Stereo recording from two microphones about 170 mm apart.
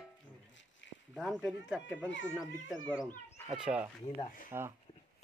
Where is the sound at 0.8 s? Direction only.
90° left.